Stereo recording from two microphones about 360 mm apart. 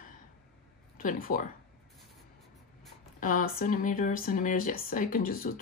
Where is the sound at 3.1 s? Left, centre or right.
Left.